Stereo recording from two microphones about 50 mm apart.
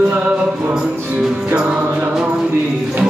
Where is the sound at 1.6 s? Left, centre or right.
Right.